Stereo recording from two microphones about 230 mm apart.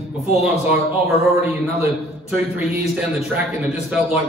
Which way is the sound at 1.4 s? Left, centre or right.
Centre.